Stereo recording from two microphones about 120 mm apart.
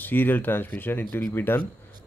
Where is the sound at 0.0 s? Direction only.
15° left (ahead or behind).